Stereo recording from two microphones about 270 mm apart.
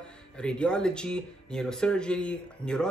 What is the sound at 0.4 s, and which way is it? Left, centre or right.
Speech, centre.